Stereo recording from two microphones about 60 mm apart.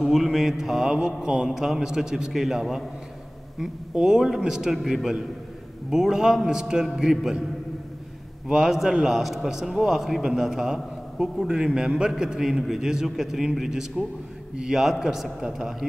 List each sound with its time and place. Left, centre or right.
0.0 s speech: centre
8.5 s speech: centre